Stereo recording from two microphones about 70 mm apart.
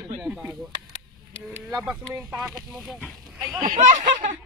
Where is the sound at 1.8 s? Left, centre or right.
Centre.